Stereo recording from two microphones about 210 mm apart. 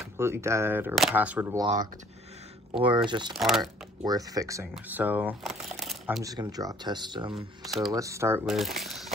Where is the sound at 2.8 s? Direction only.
20° right (ahead or behind).